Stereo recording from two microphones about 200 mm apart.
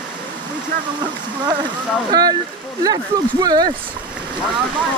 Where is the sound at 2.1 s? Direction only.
20° right (ahead or behind).